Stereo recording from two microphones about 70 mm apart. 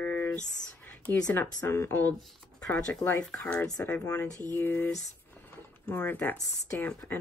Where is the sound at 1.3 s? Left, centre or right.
Left.